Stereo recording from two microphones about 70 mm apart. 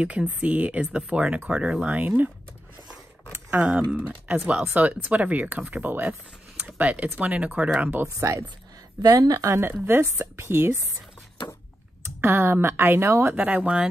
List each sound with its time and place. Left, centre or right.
0.0 s speech: centre
3.6 s speech: right
8.0 s speech: right
9.0 s speech: right
9.5 s speech: right
12.2 s speech: right
13.4 s speech: right